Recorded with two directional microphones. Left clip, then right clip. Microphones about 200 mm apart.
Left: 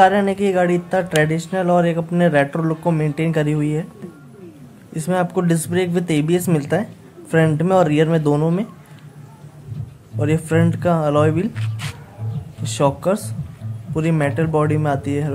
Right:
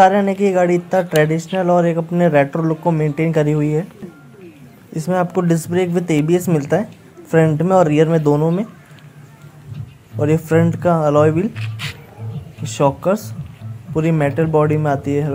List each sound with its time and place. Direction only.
0.0 s speech: 10° right (ahead or behind)
4.9 s speech: 10° right (ahead or behind)
10.1 s speech: 10° right (ahead or behind)